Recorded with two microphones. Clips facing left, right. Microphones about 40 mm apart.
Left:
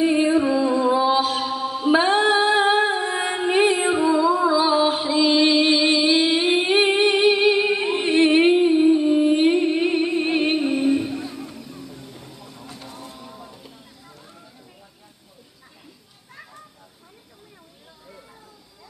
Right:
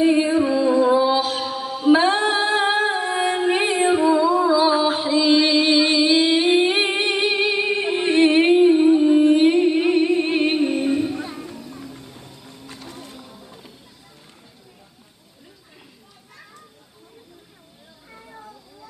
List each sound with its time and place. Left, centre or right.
0.5 s music: centre
0.9 s mantra: centre
4.1 s music: centre